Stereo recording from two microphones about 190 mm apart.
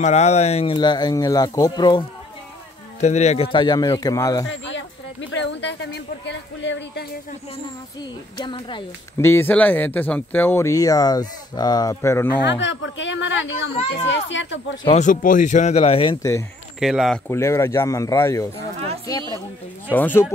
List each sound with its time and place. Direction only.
0.0 s speech: 35° left (ahead or behind)
3.0 s speech: 35° left (ahead or behind)
3.5 s speech: 20° left (ahead or behind)
4.5 s a sound: 75° left (ahead or behind)
5.3 s a woman's voice: 65° left (ahead or behind)
8.0 s speech: 25° left (ahead or behind)
9.2 s speech: 10° left (ahead or behind)
12.4 s a woman's voice: 75° left (ahead or behind)
14.9 s speech: 40° left (ahead or behind)
16.2 s speech: 15° left (ahead or behind)
16.8 s speech: centre (ahead or behind)
17.3 s speech: 15° left (ahead or behind)
19.9 s speech: 10° left (ahead or behind)